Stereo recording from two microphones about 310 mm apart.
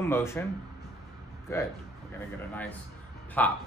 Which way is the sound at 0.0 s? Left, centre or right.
Centre.